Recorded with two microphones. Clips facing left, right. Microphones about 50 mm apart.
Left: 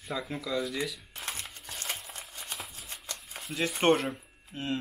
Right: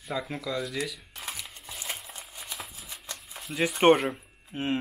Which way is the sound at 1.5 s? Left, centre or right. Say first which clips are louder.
Even; centre.